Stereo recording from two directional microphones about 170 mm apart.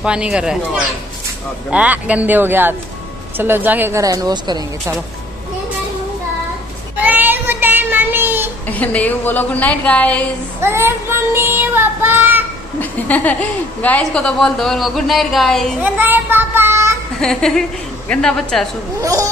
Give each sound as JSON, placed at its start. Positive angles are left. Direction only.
{"t": 0.0, "sound": "a woman's voice", "side_deg": -5}
{"t": 1.7, "sound": "child singing", "side_deg": -5}
{"t": 7.0, "sound": "child singing", "side_deg": -10}
{"t": 8.6, "sound": "a woman's voice", "side_deg": 10}
{"t": 10.6, "sound": "child singing", "side_deg": -15}
{"t": 12.8, "sound": "a woman's voice", "side_deg": 10}
{"t": 15.8, "sound": "child singing", "side_deg": -10}
{"t": 17.2, "sound": "a woman's voice", "side_deg": 5}
{"t": 18.9, "sound": "speech", "side_deg": -20}